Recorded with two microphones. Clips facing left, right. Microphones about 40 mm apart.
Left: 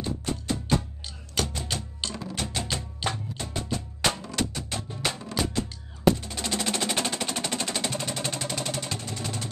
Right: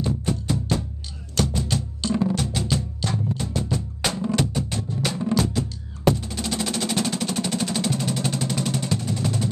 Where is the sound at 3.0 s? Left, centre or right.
Centre.